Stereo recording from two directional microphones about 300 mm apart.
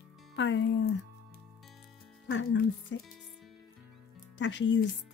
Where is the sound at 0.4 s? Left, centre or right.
Left.